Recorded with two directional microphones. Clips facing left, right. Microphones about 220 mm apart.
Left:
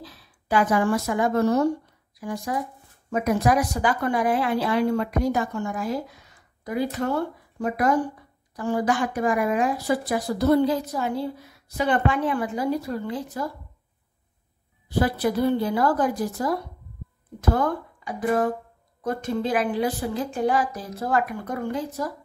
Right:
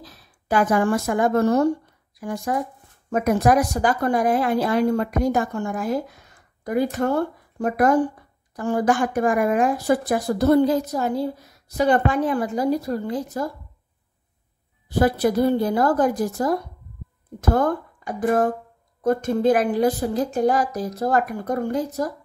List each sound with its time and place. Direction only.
0.0 s a woman's voice: 45° right (ahead or behind)
15.0 s speech: 45° right (ahead or behind)